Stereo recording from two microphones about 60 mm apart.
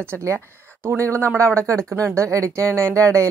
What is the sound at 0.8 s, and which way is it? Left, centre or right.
Speech, right.